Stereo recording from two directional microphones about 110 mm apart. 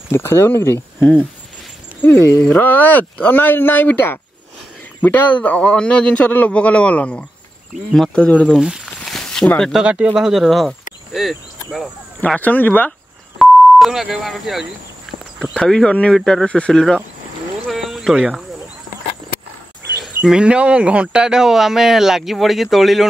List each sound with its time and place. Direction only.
0.1 s speech: 25° left (ahead or behind)
2.1 s a man's voice: 25° left (ahead or behind)
8.5 s speech: 5° right (ahead or behind)
9.0 s a sound: 5° left (ahead or behind)
9.6 s speech: 5° right (ahead or behind)
12.2 s a man's voice: 15° left (ahead or behind)
13.4 s a man's voice: centre (ahead or behind)
17.6 s a sound: centre (ahead or behind)
20.2 s speech: 10° right (ahead or behind)